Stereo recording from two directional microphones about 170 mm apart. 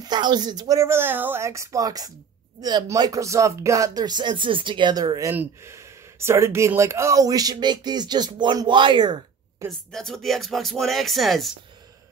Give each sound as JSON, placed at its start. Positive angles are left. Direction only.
{"t": 0.0, "sound": "speech", "side_deg": -25}
{"t": 9.7, "sound": "speech", "side_deg": 5}